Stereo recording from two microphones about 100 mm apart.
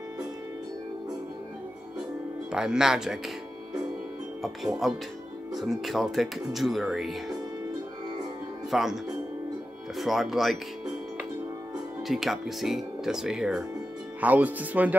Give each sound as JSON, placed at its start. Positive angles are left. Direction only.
{"t": 2.5, "sound": "speech", "side_deg": -5}
{"t": 4.8, "sound": "speech", "side_deg": 0}
{"t": 8.6, "sound": "speech", "side_deg": 0}
{"t": 12.1, "sound": "speech", "side_deg": 0}
{"t": 14.2, "sound": "speech", "side_deg": -15}